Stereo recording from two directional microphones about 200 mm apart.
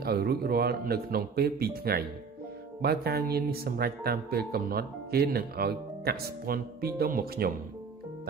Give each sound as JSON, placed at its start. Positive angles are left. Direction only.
{"t": 0.0, "sound": "speech", "side_deg": -50}